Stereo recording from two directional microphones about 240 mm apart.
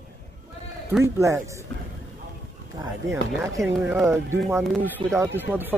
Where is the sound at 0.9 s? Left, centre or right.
Centre.